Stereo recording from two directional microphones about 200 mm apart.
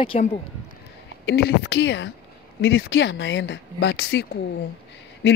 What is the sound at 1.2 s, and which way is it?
Speech, 60° left (ahead or behind).